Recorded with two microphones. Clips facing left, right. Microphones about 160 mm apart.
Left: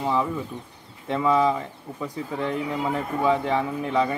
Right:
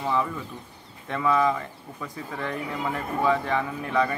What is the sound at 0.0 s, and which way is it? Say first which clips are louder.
Speech: left 2 dB; 20° left (ahead or behind).